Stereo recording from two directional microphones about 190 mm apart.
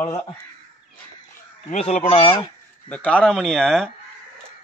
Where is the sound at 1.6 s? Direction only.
40° left (ahead or behind).